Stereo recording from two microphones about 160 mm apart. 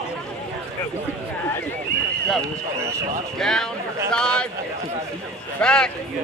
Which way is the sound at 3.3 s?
5° left (ahead or behind).